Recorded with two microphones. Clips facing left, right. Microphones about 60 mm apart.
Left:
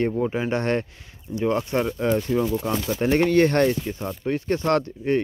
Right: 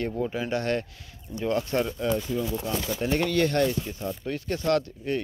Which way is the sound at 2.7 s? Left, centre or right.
Left.